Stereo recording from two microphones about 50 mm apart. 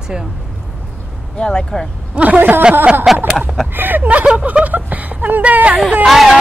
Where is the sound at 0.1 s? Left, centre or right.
Centre.